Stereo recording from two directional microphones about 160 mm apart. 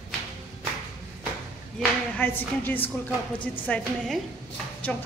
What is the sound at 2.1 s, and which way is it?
A woman's voice, 10° left (ahead or behind).